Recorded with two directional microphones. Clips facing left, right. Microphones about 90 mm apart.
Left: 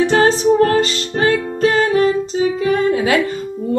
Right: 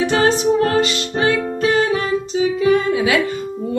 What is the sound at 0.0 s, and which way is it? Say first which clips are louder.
Music: left 3 dB; 35° left (ahead or behind).